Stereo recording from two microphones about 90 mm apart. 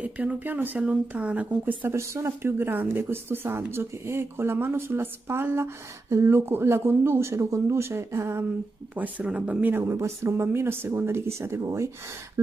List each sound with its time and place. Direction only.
0.0 s speech: 15° right (ahead or behind)
8.9 s speech: 15° right (ahead or behind); by 11.9 s 30° right (ahead or behind)